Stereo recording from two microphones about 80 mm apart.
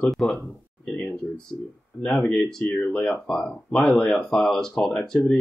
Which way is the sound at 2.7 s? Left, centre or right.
Centre.